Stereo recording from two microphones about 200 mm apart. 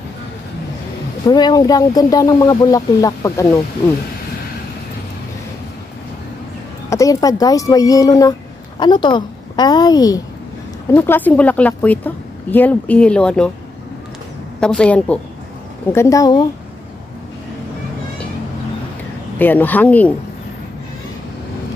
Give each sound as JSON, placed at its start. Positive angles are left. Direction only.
{"t": 1.2, "sound": "a woman's voice", "side_deg": 20}
{"t": 6.9, "sound": "a woman's voice", "side_deg": 15}
{"t": 14.6, "sound": "a woman's voice", "side_deg": 5}
{"t": 19.3, "sound": "a woman's voice", "side_deg": 10}